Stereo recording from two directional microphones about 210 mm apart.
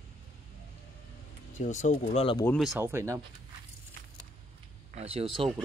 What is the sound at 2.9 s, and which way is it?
Speech, 15° right (ahead or behind).